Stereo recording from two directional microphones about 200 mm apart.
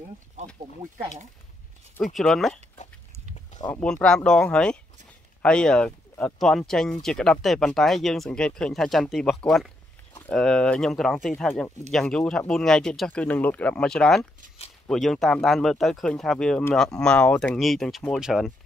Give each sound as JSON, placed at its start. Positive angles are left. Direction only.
{"t": 0.5, "sound": "speech", "side_deg": 0}
{"t": 2.1, "sound": "speech", "side_deg": 0}
{"t": 3.5, "sound": "speech", "side_deg": 20}
{"t": 3.8, "sound": "speech", "side_deg": 5}